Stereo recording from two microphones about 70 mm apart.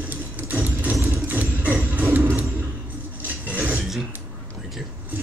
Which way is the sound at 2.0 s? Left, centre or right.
Right.